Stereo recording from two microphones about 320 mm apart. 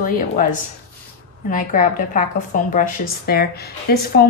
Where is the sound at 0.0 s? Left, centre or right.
Left.